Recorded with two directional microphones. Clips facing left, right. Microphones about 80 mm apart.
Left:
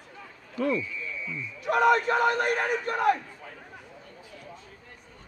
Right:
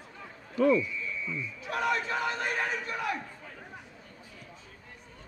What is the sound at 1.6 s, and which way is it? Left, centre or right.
Speech, left.